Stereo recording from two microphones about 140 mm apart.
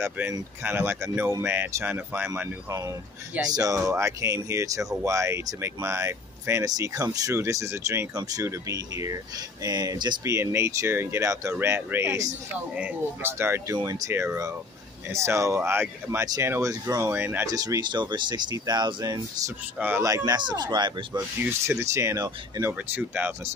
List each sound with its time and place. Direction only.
0.0 s speech: 15° right (ahead or behind)
2.7 s speech: 25° right (ahead or behind)
10.3 s speech: 15° right (ahead or behind)
17.5 s speech: 25° right (ahead or behind)
21.4 s speech: 20° right (ahead or behind)